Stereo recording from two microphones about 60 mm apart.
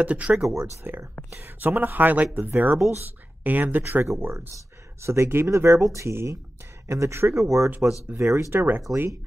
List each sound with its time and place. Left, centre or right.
0.0 s speech: right
0.8 s speech: right
3.4 s speech: right
3.8 s speech: right
8.5 s speech: right